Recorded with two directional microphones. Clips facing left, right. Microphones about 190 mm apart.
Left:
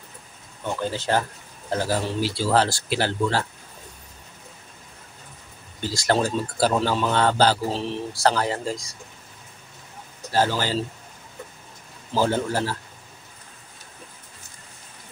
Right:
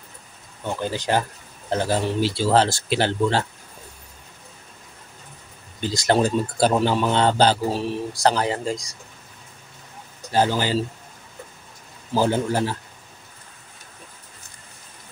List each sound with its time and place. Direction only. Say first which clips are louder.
0.8 s a man's voice: right 1 dB; 15° right (ahead or behind)
5.8 s speech: right 3 dB; 20° right (ahead or behind)
10.3 s a man's voice: right 2 dB; 15° right (ahead or behind)
12.1 s a man's voice: right 2 dB; 15° right (ahead or behind)